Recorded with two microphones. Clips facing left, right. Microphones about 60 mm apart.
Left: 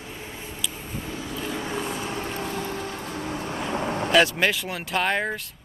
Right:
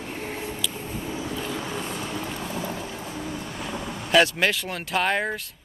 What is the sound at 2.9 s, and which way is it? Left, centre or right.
Music, left.